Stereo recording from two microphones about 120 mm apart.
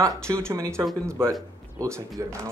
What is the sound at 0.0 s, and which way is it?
Speech, 25° right (ahead or behind).